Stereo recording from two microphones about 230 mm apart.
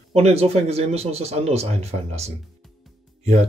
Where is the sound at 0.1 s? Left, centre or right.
Right.